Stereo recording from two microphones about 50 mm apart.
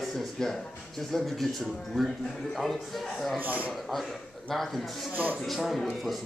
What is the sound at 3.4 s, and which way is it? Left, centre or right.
Speech, right.